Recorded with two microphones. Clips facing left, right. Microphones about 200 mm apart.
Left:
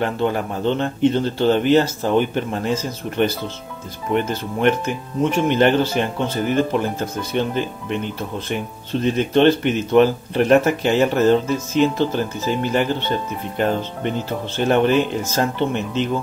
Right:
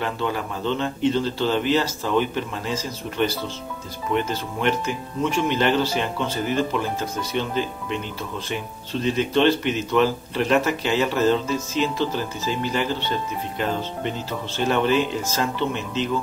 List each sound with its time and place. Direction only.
0.0 s speech: 50° left (ahead or behind)